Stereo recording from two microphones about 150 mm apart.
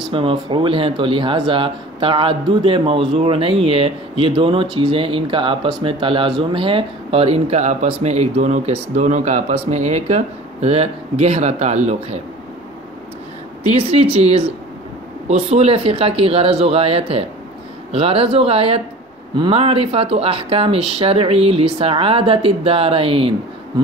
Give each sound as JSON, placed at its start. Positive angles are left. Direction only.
{"t": 0.1, "sound": "speech", "side_deg": -35}
{"t": 13.7, "sound": "speech", "side_deg": -45}